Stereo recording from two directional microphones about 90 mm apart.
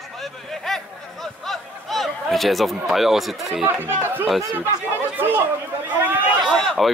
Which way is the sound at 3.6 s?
25° right (ahead or behind).